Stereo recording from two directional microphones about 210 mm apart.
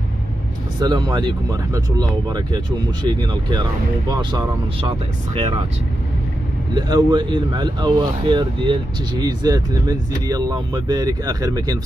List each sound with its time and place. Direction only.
0.7 s speech: 20° right (ahead or behind)
6.7 s speech: 20° right (ahead or behind)